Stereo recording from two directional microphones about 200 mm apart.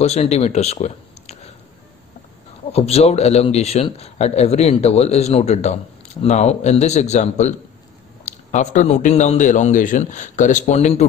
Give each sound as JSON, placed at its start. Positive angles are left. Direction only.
{"t": 0.0, "sound": "speech", "side_deg": 30}
{"t": 2.7, "sound": "a man's voice", "side_deg": 30}